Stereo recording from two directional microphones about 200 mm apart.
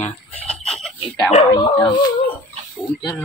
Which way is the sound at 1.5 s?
20° left (ahead or behind).